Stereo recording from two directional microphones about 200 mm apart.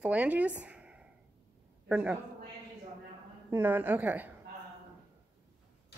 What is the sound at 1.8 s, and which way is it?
Speech, 5° right (ahead or behind).